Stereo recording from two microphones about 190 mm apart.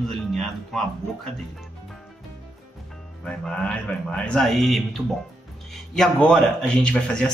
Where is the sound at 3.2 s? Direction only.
5° left (ahead or behind).